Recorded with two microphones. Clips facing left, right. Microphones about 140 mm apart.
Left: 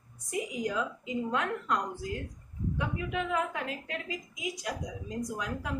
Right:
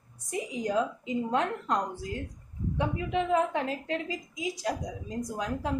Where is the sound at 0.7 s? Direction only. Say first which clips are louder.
Right 4 dB; 30° right (ahead or behind).